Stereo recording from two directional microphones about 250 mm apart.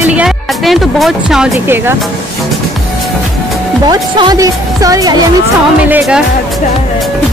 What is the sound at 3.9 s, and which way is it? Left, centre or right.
A woman's voice, centre.